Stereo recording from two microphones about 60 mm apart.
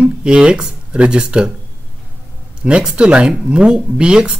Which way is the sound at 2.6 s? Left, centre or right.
Centre.